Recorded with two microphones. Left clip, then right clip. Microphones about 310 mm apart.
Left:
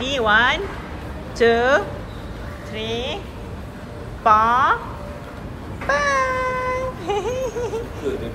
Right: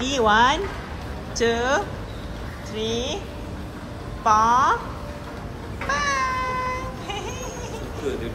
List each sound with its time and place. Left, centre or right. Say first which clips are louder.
0.0 s a woman's voice: left 1 dB; centre
4.2 s a woman's voice: left 2 dB; centre
5.9 s a sound: left 4 dB; centre